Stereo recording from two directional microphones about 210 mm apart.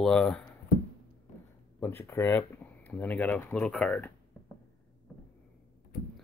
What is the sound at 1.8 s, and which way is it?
Speech, 10° left (ahead or behind).